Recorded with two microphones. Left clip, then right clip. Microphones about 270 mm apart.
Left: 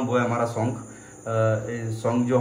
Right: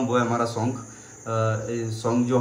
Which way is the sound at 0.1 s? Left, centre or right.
Centre.